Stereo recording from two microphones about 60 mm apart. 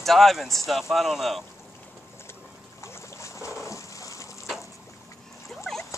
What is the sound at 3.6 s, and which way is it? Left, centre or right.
Water, left.